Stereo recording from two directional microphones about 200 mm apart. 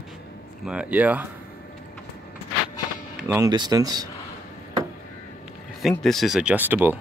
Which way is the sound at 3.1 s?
5° right (ahead or behind).